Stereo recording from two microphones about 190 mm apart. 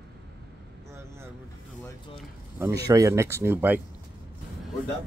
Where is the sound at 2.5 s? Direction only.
15° right (ahead or behind).